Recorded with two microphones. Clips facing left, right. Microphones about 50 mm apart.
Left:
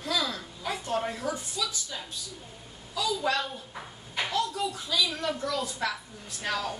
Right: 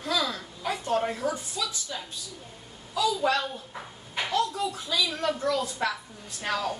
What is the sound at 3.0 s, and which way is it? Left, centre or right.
Speech, centre.